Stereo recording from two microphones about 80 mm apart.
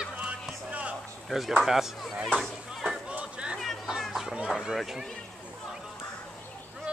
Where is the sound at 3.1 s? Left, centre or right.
Centre.